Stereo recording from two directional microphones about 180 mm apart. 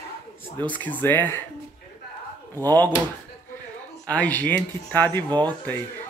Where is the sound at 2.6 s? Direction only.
20° right (ahead or behind).